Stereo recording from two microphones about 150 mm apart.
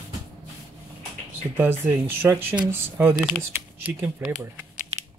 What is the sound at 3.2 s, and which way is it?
Speech, centre (ahead or behind).